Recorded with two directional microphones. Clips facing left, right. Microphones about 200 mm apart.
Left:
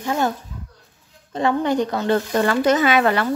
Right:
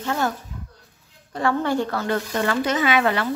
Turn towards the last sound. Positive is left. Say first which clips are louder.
# left 3 dB
turn(degrees=45)  # may be behind; listen again after turning